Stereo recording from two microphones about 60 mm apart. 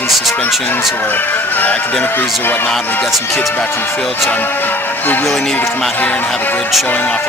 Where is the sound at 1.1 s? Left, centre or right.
Left.